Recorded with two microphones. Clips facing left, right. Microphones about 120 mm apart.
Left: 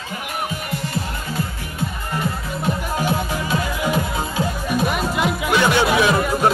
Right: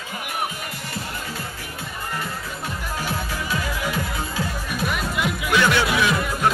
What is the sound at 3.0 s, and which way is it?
Music, 20° left (ahead or behind).